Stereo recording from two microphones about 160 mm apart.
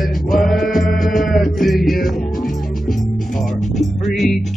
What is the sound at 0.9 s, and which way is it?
Music, centre (ahead or behind).